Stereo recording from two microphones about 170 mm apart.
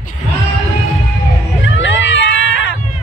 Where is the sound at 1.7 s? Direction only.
90° left.